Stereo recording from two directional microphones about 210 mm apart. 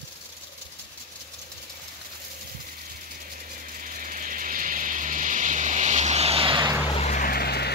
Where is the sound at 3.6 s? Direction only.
40° right (ahead or behind); by 6.8 s 20° right (ahead or behind).